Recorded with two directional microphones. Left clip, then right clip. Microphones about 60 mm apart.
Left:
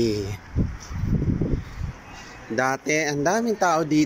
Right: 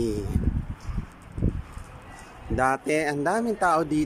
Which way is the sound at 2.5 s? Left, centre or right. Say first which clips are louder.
Left 1 dB; right.